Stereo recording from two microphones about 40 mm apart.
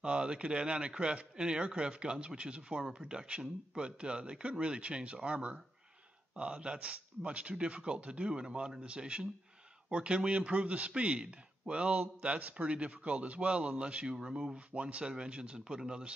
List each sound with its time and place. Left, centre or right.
0.0 s a man's voice: right
14.7 s a man's voice: right